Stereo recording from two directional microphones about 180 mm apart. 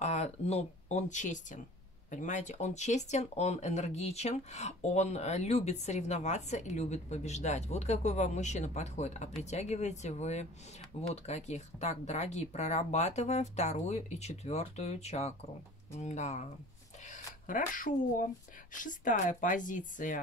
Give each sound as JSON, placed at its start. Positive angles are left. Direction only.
{"t": 0.0, "sound": "speech", "side_deg": 40}